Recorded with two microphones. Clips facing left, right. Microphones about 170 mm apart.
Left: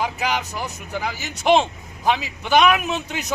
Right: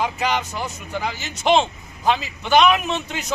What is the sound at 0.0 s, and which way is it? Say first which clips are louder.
A man's voice: right 1 dB; 5° left (ahead or behind).